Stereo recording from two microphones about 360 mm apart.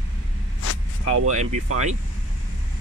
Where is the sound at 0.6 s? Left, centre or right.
Left.